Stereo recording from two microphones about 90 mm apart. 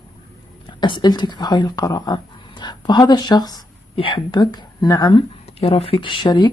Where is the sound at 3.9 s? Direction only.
70° left (ahead or behind).